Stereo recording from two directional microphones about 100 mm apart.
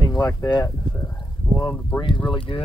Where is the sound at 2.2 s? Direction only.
60° left (ahead or behind).